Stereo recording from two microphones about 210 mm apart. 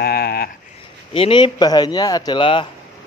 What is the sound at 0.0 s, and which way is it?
Sheep, 45° left (ahead or behind).